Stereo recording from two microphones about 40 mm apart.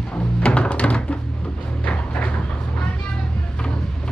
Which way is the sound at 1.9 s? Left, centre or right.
Left.